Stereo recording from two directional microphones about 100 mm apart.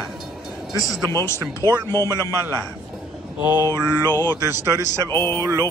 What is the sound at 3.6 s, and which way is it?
Speech, 35° right (ahead or behind).